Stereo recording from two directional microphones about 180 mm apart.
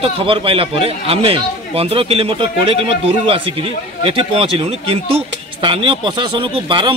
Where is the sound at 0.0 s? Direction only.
30° right (ahead or behind).